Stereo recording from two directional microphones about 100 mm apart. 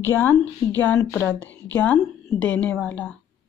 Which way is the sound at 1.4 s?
15° left (ahead or behind).